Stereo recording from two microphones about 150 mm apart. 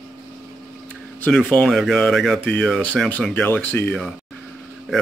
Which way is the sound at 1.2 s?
10° left (ahead or behind).